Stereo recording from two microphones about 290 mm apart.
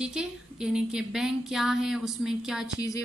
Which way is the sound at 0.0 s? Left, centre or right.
Centre.